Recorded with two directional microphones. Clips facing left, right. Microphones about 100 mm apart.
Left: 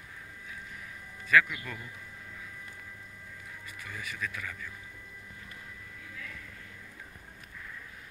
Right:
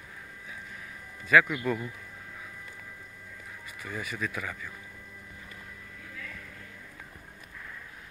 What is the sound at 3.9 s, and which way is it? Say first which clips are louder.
Speech: right 4 dB; 30° right (ahead or behind).